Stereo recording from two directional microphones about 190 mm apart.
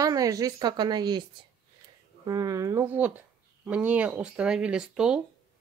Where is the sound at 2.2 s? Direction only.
20° right (ahead or behind); by 5.2 s 5° right (ahead or behind).